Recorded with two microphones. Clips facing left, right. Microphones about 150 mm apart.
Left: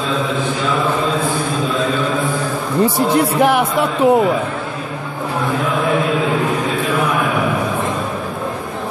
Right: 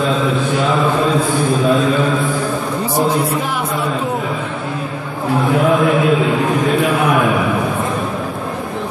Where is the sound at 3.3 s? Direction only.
65° left (ahead or behind).